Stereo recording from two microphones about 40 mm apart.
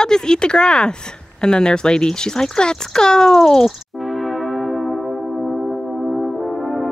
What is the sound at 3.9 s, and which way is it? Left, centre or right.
Music, centre.